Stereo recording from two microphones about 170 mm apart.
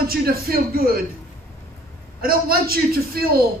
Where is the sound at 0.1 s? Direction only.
60° right (ahead or behind).